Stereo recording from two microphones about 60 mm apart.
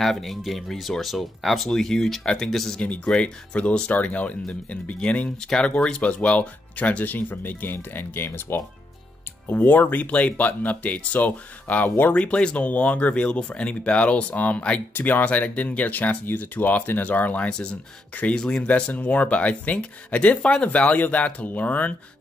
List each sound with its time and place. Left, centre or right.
0.0 s speech: centre
2.8 s speech: left
18.7 s speech: left